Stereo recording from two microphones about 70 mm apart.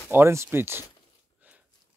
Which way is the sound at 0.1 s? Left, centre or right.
Right.